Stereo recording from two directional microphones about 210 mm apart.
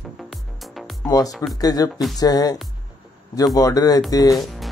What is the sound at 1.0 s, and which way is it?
Speech, 15° left (ahead or behind).